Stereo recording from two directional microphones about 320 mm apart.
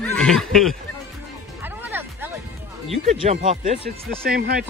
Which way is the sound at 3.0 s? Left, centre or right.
Right.